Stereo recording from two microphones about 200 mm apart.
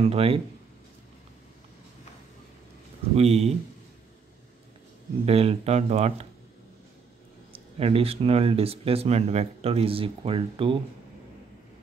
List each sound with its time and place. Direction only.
0.0 s speech: 30° right (ahead or behind)
3.2 s speech: 30° right (ahead or behind)
5.2 s speech: 30° right (ahead or behind)
7.5 s speech: 30° right (ahead or behind)